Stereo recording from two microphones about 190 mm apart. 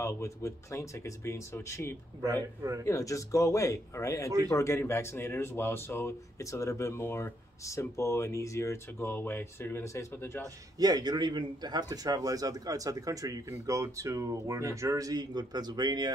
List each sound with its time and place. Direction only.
0.0 s a man's voice: 15° left (ahead or behind)
10.8 s a man's voice: 20° right (ahead or behind)